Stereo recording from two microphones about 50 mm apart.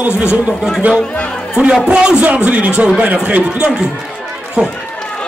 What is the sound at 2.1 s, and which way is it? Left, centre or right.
A man's voice, right.